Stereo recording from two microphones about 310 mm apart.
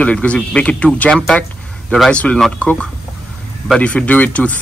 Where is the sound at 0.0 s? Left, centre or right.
Centre.